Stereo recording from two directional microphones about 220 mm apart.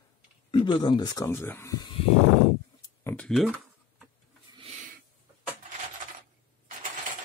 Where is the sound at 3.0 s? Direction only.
5° left (ahead or behind).